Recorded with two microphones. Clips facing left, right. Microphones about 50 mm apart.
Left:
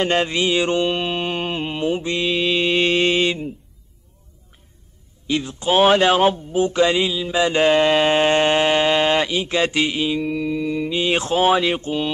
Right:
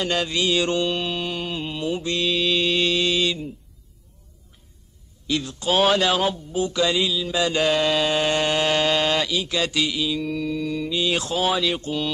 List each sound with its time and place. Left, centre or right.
0.0 s a man's voice: left
5.2 s a man's voice: left